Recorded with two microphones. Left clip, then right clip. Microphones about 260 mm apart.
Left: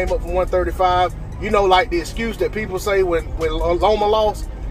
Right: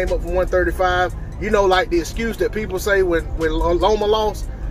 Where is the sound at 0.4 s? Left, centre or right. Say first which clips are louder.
Even; right.